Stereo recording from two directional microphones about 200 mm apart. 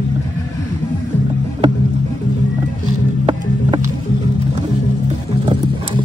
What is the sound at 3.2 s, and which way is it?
Music, 25° right (ahead or behind).